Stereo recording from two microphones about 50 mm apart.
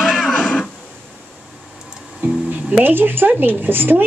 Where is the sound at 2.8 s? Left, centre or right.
Right.